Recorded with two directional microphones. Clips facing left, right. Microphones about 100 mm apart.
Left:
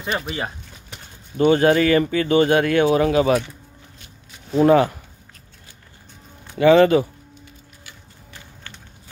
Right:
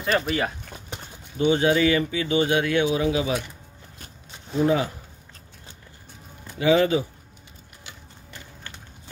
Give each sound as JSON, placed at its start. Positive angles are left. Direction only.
{"t": 0.0, "sound": "speech", "side_deg": 25}
{"t": 1.4, "sound": "speech", "side_deg": 55}
{"t": 4.6, "sound": "speech", "side_deg": 65}
{"t": 6.6, "sound": "speech", "side_deg": 60}